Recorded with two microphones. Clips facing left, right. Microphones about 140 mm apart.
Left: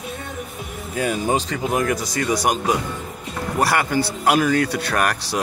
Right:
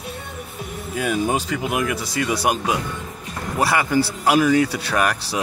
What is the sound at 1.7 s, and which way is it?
Speech, 40° left (ahead or behind).